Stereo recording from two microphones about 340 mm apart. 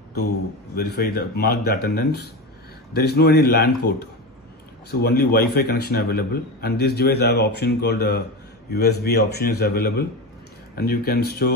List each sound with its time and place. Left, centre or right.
0.7 s a man's voice: left